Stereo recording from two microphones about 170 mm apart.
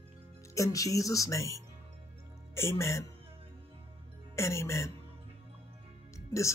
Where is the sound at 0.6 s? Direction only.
20° left (ahead or behind).